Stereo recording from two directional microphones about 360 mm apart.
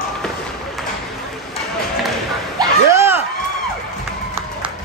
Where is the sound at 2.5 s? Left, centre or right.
Centre.